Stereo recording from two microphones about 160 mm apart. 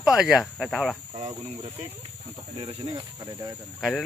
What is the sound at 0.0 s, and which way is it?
Speech, 5° right (ahead or behind).